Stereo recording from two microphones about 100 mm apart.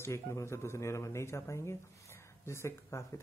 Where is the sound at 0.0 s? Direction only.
30° left (ahead or behind).